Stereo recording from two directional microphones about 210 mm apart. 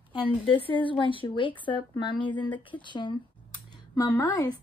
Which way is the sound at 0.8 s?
25° left (ahead or behind).